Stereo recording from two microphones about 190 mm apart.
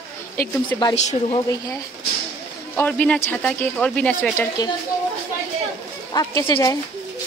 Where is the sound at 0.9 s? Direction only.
35° left (ahead or behind).